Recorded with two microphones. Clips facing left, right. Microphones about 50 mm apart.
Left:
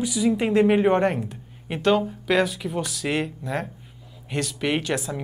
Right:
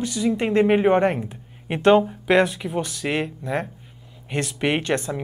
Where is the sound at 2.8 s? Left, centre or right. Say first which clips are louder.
Right 1 dB; centre.